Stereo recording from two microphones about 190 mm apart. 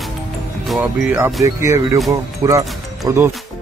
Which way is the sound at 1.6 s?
15° right (ahead or behind).